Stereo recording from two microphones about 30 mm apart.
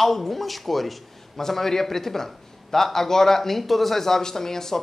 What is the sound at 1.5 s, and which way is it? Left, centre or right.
Speech, centre.